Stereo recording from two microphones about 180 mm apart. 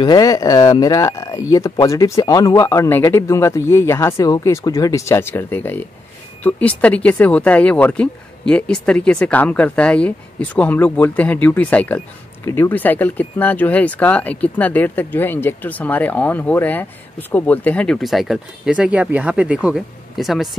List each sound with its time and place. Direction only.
0.0 s speech: 20° left (ahead or behind); by 20.4 s centre (ahead or behind)